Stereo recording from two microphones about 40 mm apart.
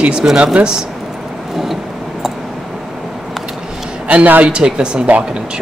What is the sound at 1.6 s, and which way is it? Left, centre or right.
Vehicle, centre.